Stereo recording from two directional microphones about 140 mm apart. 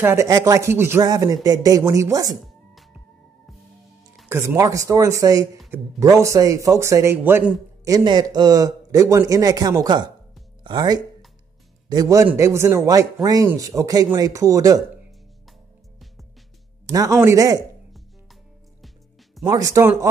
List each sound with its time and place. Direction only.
0.0 s speech: 20° right (ahead or behind)
1.0 s speech: 25° right (ahead or behind)
2.4 s music: centre (ahead or behind)
4.3 s speech: 15° right (ahead or behind)
7.8 s speech: 30° right (ahead or behind)
16.8 s speech: 25° right (ahead or behind)
17.9 s music: centre (ahead or behind)
19.4 s speech: 25° right (ahead or behind)